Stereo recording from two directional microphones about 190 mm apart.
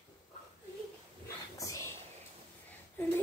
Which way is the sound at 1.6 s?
15° left (ahead or behind).